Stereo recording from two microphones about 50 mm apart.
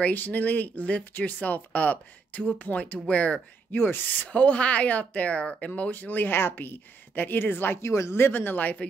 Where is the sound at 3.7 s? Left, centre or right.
Left.